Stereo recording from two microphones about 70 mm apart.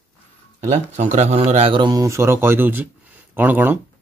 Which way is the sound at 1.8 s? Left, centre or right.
Right.